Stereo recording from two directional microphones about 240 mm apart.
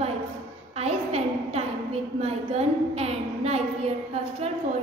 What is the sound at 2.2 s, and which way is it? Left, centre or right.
A woman's voice, right.